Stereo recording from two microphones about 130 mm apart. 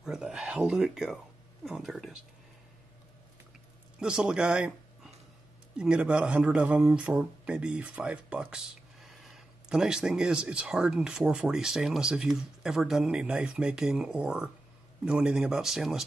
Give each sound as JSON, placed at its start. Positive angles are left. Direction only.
{"t": 0.0, "sound": "speech", "side_deg": -5}
{"t": 4.0, "sound": "speech", "side_deg": -5}